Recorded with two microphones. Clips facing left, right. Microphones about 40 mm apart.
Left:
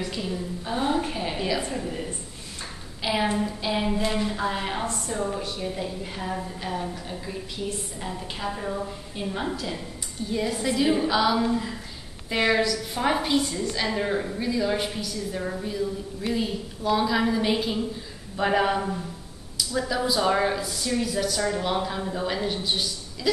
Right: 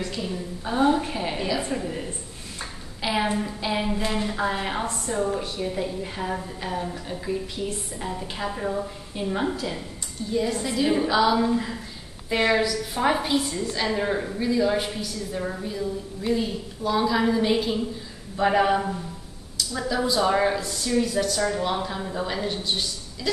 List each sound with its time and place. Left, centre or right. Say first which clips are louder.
0.1 s a sound: even; centre
1.7 s a woman's voice: right 2 dB; centre
4.8 s a woman's voice: right 2 dB; right
5.6 s a woman's voice: right 3 dB; centre
10.3 s a woman's voice: right 1 dB; centre